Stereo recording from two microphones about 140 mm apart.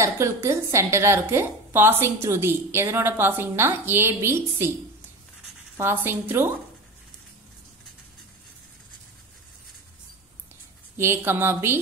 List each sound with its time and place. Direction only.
0.0 s a woman's voice: 20° right (ahead or behind)
5.8 s a woman's voice: 15° right (ahead or behind)
11.0 s a woman's voice: 15° right (ahead or behind)